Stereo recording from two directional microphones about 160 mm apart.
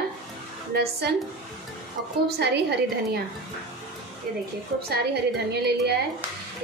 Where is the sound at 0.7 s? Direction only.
80° right.